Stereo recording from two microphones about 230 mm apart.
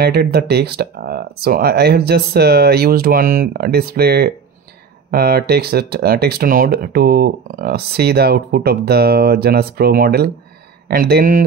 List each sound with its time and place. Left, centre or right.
0.0 s speech: right